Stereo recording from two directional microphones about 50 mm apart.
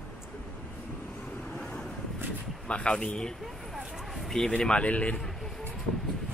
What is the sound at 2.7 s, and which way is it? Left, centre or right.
A man's voice, left.